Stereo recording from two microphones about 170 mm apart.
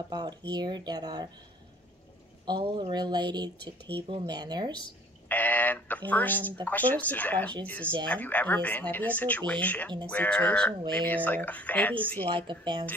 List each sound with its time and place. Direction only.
0.1 s speech: 25° right (ahead or behind)
2.4 s speech: 30° right (ahead or behind)
5.3 s speech: 10° left (ahead or behind)
12.4 s speech: 25° right (ahead or behind)